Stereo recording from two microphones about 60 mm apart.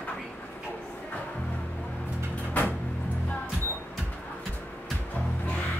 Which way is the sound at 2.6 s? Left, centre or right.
Left.